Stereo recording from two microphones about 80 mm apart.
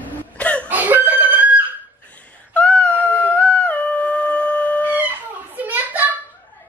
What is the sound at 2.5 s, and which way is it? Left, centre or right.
Dog, centre.